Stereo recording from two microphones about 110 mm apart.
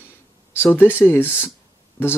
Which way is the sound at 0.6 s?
15° left (ahead or behind).